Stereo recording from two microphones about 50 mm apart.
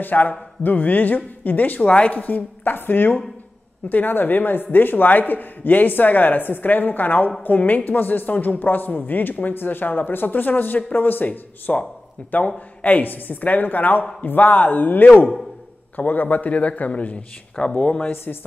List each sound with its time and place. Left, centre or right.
0.0 s a man's voice: left
1.9 s speech: left
2.1 s a man's voice: left
18.1 s speech: left